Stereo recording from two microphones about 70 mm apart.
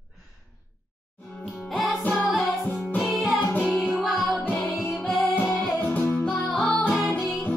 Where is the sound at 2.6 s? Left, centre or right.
Left.